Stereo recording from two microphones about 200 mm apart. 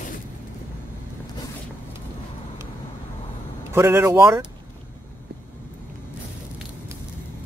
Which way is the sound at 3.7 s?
10° right (ahead or behind).